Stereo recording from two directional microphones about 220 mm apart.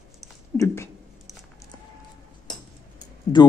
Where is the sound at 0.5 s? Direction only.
10° left (ahead or behind).